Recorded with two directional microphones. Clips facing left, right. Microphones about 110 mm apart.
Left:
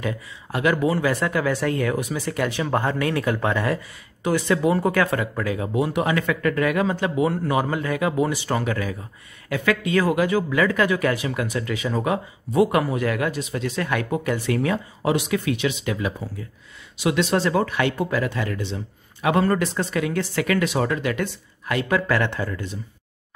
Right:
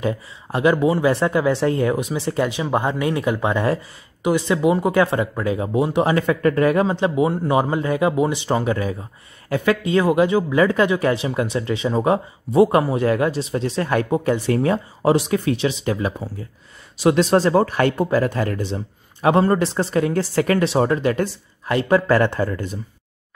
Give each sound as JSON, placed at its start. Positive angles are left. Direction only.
{"t": 0.0, "sound": "speech", "side_deg": -30}
{"t": 19.2, "sound": "speech", "side_deg": -30}